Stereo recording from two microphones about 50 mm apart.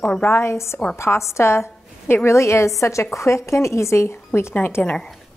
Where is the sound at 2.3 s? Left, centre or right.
Left.